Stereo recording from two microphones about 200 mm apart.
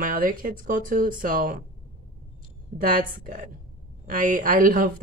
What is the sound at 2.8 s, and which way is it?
A woman's voice, 40° right (ahead or behind).